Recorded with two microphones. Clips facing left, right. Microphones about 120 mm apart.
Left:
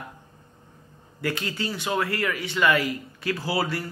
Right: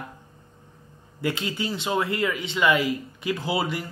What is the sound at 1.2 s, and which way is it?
A man's voice, 20° right (ahead or behind).